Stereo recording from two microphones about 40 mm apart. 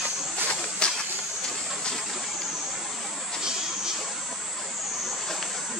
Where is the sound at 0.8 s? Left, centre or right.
Left.